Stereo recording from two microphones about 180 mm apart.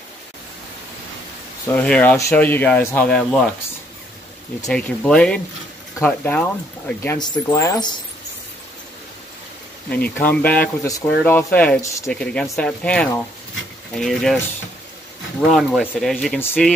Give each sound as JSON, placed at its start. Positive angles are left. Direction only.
{"t": 1.7, "sound": "speech", "side_deg": 10}
{"t": 4.6, "sound": "speech", "side_deg": 5}
{"t": 7.2, "sound": "speech", "side_deg": 25}
{"t": 9.8, "sound": "speech", "side_deg": 10}
{"t": 15.5, "sound": "speech", "side_deg": -5}